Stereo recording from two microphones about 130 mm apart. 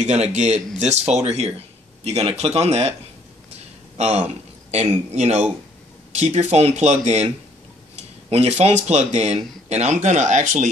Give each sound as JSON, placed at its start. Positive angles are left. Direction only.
{"t": 0.0, "sound": "speech", "side_deg": -60}
{"t": 4.0, "sound": "speech", "side_deg": -55}